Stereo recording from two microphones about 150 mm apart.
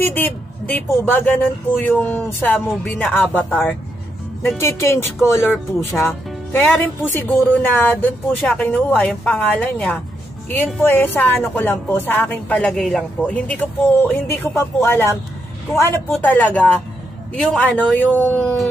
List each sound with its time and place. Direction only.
0.0 s a woman's voice: 10° left (ahead or behind)
4.6 s a woman's voice: 20° left (ahead or behind)